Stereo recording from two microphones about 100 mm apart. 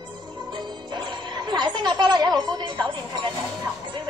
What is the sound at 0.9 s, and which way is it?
Speech, 45° right (ahead or behind).